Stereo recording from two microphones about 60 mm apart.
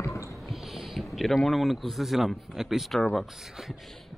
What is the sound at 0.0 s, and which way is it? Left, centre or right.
Squish, left.